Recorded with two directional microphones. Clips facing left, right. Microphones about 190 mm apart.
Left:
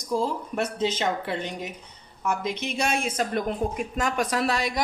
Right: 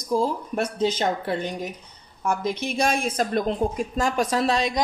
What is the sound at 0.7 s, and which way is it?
Speech, 45° right (ahead or behind).